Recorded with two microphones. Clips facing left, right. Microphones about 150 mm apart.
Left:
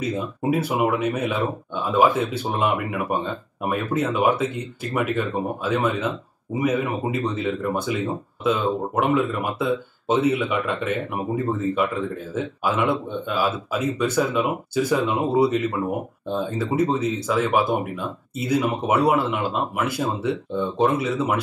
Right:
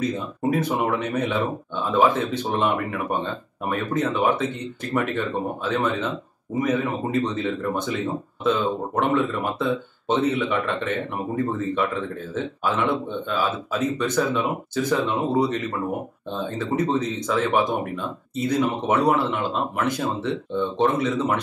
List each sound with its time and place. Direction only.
0.0 s speech: 10° left (ahead or behind)